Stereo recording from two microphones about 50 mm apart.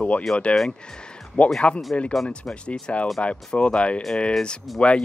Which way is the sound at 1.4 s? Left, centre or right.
Left.